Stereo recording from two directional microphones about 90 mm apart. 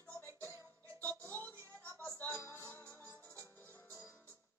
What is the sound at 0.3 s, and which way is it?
Music, 35° right (ahead or behind).